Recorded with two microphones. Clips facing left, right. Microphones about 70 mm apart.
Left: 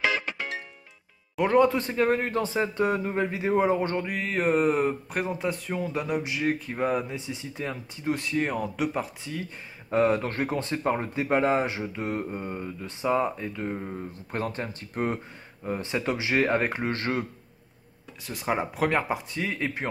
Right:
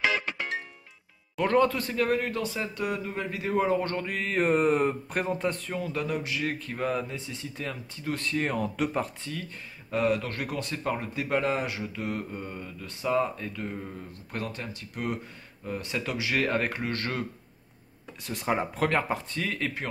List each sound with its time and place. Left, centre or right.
0.0 s music: centre
1.4 s speech: centre
9.8 s speech: left
18.2 s speech: centre; by 19.9 s left